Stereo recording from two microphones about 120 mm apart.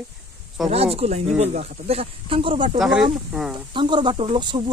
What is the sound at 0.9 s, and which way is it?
Speech, 60° right (ahead or behind).